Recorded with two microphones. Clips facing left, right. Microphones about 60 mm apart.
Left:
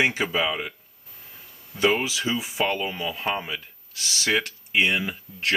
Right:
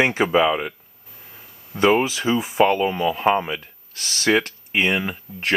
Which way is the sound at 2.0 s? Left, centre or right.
Right.